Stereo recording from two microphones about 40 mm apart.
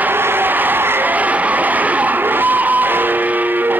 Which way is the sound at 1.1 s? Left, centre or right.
Right.